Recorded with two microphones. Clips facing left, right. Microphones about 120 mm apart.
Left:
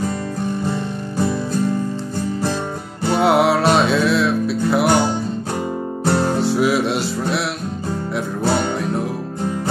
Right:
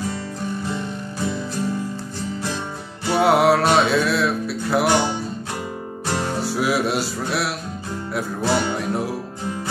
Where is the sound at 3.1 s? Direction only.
Centre (ahead or behind).